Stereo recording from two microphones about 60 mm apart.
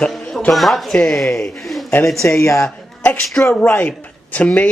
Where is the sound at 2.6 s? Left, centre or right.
Left.